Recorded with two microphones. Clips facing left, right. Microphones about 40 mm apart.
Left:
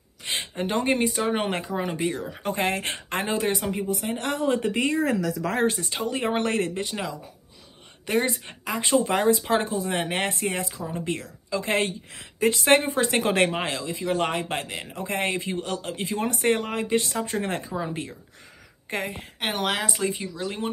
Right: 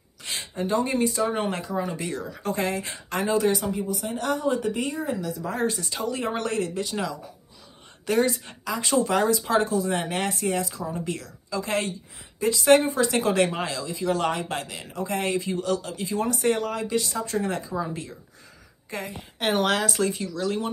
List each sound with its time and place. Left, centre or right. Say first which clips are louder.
0.2 s speech: left 1 dB; left
2.0 s speech: left 3 dB; left
2.6 s a man's voice: left 2 dB; left
5.0 s speech: left 4 dB; left
5.6 s a man's voice: left 1 dB; left
6.8 s a man's voice: right 1 dB; left
14.0 s speech: right 1 dB; left
14.3 s a man's voice: left 1 dB; left
19.4 s speech: right 3 dB; centre